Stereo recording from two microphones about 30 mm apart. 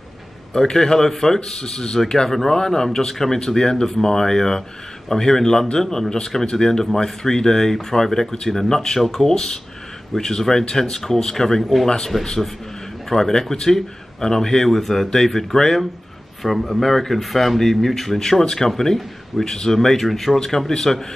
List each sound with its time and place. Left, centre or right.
0.5 s speech: centre
2.2 s speech: centre
2.5 s speech: centre
12.1 s a man's voice: centre
13.1 s speech: centre
14.7 s a man's voice: centre
16.4 s speech: centre
18.4 s speech: left
18.7 s speech: centre
19.4 s speech: left
19.7 s speech: centre